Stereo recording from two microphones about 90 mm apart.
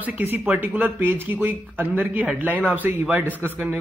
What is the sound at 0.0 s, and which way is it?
A man's voice, 20° right (ahead or behind).